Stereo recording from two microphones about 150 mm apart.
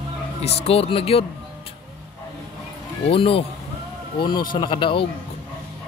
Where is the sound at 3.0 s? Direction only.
40° left (ahead or behind).